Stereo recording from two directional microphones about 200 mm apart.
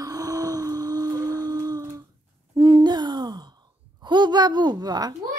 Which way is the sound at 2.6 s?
25° right (ahead or behind).